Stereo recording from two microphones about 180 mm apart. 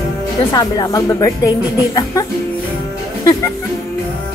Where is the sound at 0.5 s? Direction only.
20° left (ahead or behind).